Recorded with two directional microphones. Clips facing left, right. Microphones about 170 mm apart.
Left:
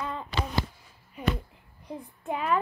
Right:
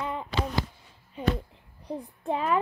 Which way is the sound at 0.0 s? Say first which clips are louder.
Right 2 dB; 15° right (ahead or behind).